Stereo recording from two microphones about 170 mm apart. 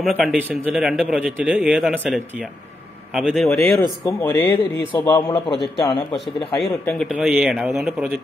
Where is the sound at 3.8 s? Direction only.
15° left (ahead or behind).